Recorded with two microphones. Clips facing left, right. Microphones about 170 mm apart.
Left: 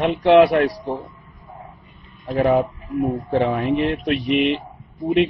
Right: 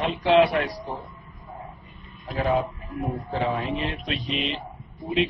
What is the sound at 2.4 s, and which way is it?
Speech, 60° left (ahead or behind).